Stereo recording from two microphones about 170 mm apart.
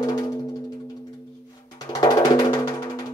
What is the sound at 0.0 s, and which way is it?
Music, 25° left (ahead or behind).